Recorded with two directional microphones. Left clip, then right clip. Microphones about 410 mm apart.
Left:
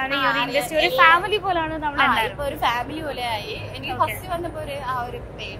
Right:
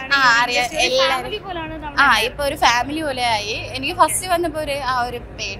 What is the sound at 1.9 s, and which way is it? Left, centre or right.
A woman's voice, right.